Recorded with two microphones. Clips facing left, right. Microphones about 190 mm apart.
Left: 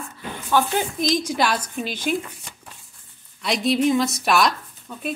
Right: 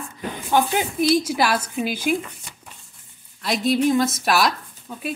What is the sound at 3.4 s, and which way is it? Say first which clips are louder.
Speech: even; centre (ahead or behind).